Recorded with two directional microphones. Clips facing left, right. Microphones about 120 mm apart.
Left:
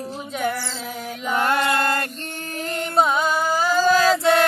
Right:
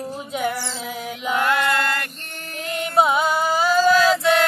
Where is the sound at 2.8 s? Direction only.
10° right (ahead or behind).